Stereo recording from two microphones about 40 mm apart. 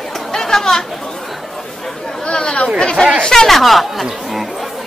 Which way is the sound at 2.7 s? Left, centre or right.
Centre.